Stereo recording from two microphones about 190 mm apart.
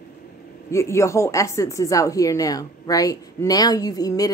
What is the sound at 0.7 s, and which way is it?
A woman's voice, 15° left (ahead or behind).